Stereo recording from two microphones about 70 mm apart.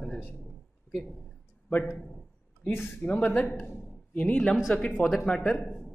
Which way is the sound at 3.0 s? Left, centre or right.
Left.